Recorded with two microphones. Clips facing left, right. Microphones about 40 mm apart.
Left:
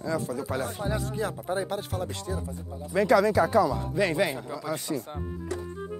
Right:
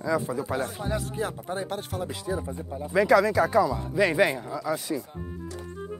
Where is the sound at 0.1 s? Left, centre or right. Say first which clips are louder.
Right 3 dB; centre.